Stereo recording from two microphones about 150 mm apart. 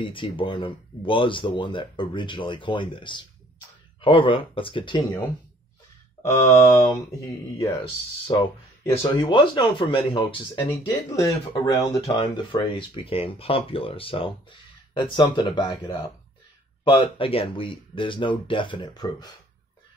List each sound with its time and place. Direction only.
0.0 s speech: 35° left (ahead or behind)
6.2 s mantra: 15° left (ahead or behind)
7.5 s speech: 25° left (ahead or behind)
8.8 s speech: 15° left (ahead or behind)
9.2 s speech: 35° left (ahead or behind)
10.6 s speech: 20° left (ahead or behind)
12.2 s speech: 35° left (ahead or behind)
16.8 s speech: 35° left (ahead or behind)